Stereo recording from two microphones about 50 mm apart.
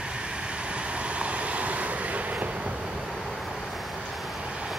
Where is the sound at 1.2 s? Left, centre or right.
Right.